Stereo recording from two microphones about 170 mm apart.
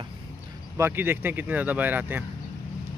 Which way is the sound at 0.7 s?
15° right (ahead or behind).